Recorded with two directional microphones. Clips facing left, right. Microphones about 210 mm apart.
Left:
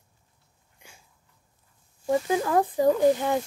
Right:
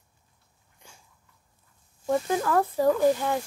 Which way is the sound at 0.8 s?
10° left (ahead or behind).